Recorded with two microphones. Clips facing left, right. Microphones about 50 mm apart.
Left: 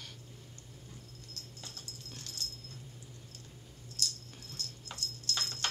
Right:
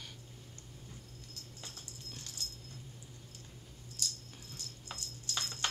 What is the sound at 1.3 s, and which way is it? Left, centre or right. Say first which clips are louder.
Dog: left 1 dB; centre.